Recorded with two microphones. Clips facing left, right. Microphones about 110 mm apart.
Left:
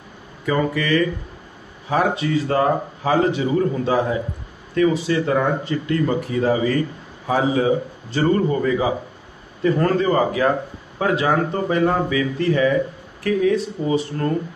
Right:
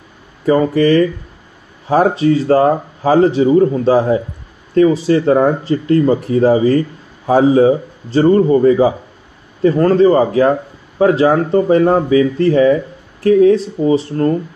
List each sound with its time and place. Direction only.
0.5 s speech: 35° right (ahead or behind)